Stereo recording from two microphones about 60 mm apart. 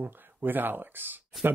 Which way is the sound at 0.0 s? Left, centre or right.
Right.